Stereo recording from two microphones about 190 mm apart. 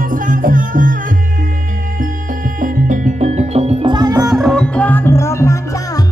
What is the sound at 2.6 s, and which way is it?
Music, 45° right (ahead or behind).